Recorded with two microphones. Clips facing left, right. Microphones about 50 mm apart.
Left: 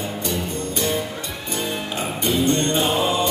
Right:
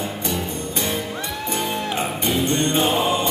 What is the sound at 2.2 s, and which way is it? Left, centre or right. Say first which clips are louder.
Music: left 2 dB; right.